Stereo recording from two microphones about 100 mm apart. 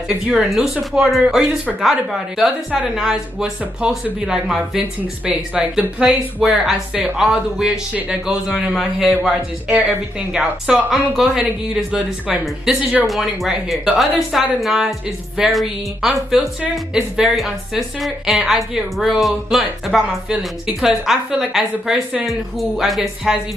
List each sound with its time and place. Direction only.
0.1 s a woman's voice: 10° right (ahead or behind)
4.7 s a woman's voice: 15° right (ahead or behind)
13.0 s a woman's voice: centre (ahead or behind)